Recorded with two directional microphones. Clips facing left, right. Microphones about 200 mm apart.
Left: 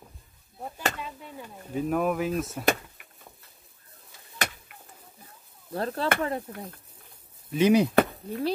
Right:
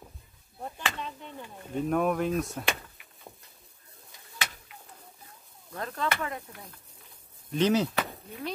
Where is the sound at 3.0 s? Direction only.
50° left (ahead or behind).